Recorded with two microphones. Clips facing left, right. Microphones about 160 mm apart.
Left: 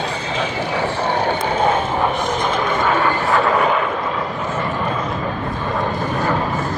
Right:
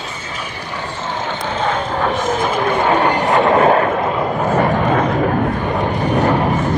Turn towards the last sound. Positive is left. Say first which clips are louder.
# right 5 dB
turn(degrees=-75)  # may be behind; listen again after turning